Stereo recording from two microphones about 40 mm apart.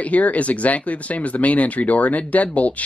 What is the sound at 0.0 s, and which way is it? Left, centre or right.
Speech, left.